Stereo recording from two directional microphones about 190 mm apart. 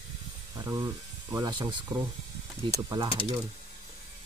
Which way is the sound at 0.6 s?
20° right (ahead or behind).